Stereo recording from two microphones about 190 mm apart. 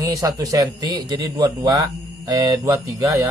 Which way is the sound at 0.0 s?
20° right (ahead or behind).